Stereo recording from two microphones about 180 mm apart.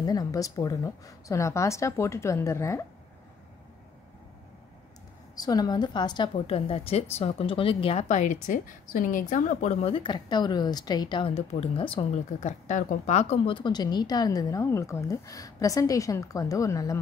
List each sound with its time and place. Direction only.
0.0 s a woman's voice: 20° left (ahead or behind)
5.3 s a woman's voice: 20° left (ahead or behind)